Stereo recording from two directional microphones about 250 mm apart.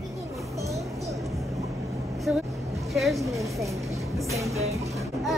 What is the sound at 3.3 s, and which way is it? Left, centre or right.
Speech, centre.